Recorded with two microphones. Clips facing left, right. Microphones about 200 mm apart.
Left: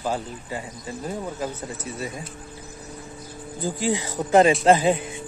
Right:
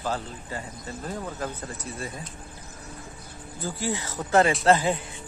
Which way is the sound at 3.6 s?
15° left (ahead or behind).